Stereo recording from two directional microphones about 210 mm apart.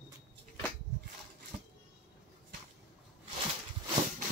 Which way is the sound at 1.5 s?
30° right (ahead or behind).